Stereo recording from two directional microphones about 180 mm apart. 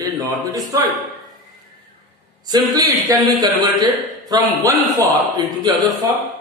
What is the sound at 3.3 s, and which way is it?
A man's voice, 20° right (ahead or behind).